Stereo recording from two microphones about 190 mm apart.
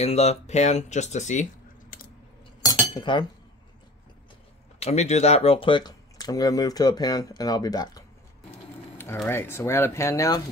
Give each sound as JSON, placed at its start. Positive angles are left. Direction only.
{"t": 0.0, "sound": "speech", "side_deg": 35}
{"t": 2.6, "sound": "cutlery", "side_deg": 25}
{"t": 4.7, "sound": "speech", "side_deg": 35}